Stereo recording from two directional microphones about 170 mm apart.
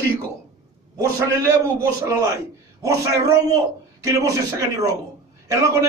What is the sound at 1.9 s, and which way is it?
A man's voice, 20° right (ahead or behind).